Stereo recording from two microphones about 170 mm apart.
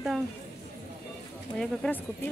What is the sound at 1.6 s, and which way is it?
Speech, 10° left (ahead or behind).